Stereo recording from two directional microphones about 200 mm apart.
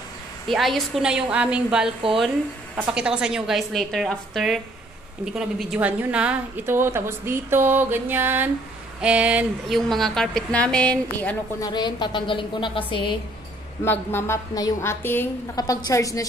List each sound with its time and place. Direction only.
0.5 s a woman's voice: centre (ahead or behind)
11.6 s a woman's voice: 20° left (ahead or behind)
13.8 s a woman's voice: 10° left (ahead or behind)